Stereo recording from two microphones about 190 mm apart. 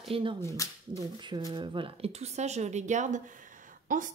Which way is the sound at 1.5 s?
25° right (ahead or behind).